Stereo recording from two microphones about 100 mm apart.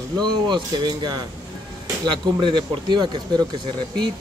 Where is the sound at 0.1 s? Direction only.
45° right (ahead or behind).